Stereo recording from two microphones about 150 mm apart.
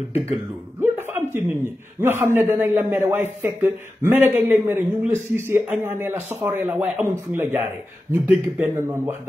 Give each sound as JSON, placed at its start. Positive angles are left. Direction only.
{"t": 0.7, "sound": "a man's voice", "side_deg": -15}